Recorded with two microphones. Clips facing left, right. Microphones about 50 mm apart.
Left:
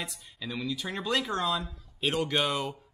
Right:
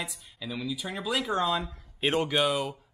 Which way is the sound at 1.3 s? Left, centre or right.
Right.